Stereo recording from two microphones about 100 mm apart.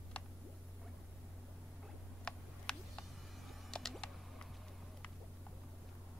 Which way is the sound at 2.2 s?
10° left (ahead or behind).